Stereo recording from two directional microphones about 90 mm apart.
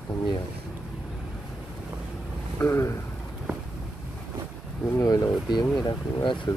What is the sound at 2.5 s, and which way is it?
Vehicle, 30° left (ahead or behind).